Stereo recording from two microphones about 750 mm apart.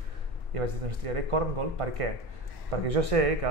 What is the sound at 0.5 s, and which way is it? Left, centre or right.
Speech, right.